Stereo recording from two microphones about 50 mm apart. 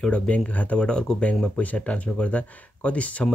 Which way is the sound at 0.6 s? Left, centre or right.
Left.